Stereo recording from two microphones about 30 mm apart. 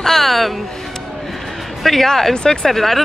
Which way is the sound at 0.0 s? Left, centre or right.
Centre.